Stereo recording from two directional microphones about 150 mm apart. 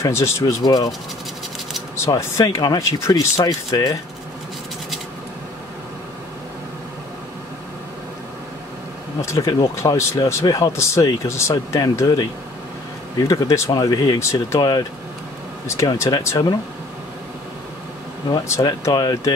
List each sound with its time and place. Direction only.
0.0 s speech: 20° left (ahead or behind)
2.0 s speech: 25° left (ahead or behind)
9.2 s speech: 20° left (ahead or behind)
18.6 s speech: 25° left (ahead or behind)